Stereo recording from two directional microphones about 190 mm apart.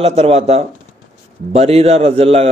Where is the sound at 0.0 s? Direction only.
30° right (ahead or behind).